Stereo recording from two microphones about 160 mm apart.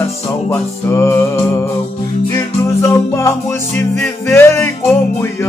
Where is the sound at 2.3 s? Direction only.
20° left (ahead or behind).